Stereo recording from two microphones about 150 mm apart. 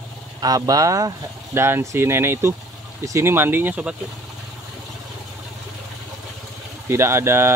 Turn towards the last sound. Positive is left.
turn(degrees=-15)  # may be behind; listen again after turning